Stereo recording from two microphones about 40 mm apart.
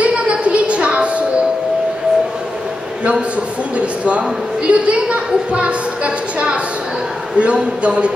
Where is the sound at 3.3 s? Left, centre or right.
Right.